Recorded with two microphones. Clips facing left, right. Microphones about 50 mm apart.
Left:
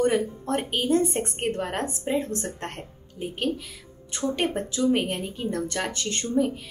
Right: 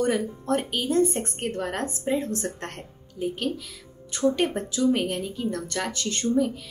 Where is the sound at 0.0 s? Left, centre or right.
Centre.